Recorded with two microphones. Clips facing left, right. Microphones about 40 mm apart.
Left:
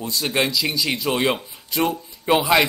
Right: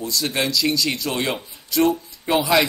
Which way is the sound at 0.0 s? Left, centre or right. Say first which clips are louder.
Left 1 dB; left.